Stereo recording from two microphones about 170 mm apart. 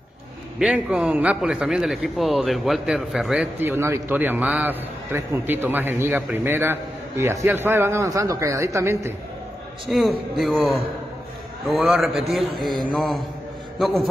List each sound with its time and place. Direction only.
0.6 s a man's voice: 5° right (ahead or behind)
9.8 s a man's voice: centre (ahead or behind)